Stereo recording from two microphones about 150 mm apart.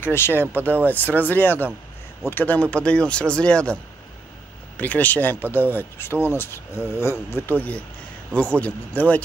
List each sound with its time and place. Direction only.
0.0 s speech: 15° left (ahead or behind)
4.7 s speech: 10° left (ahead or behind)